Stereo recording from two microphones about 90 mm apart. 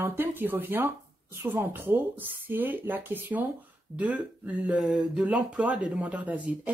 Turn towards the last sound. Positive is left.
turn(degrees=-15)  # may be behind; listen again after turning